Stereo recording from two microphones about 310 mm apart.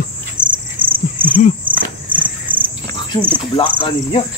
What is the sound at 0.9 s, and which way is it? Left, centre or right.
Cricket, centre.